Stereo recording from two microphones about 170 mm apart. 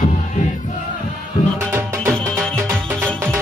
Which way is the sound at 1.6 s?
15° right (ahead or behind).